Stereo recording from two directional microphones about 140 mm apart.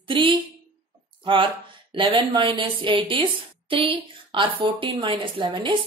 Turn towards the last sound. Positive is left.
turn(degrees=-35)  # may be behind; listen again after turning